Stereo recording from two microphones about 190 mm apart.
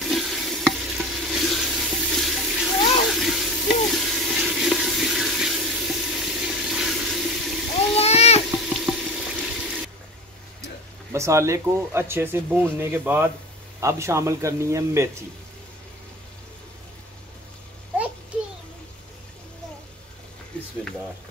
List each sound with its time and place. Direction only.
0.0 s stir: centre (ahead or behind)
3.1 s frying: centre (ahead or behind)
8.0 s a sound: 35° left (ahead or behind)
8.5 s water: centre (ahead or behind)
10.6 s speech: 15° right (ahead or behind)
20.5 s a sound: 5° left (ahead or behind)